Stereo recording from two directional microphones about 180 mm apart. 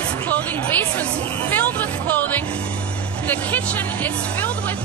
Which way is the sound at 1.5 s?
10° left (ahead or behind).